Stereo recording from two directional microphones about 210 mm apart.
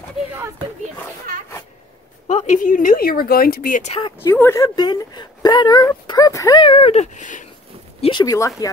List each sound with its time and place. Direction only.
2.5 s a woman's voice: 40° left (ahead or behind)
4.0 s speech: 15° left (ahead or behind); by 7.4 s 35° left (ahead or behind)
8.0 s speech: 20° left (ahead or behind)